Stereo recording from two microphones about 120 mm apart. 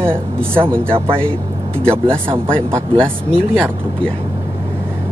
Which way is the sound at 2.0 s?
50° right (ahead or behind).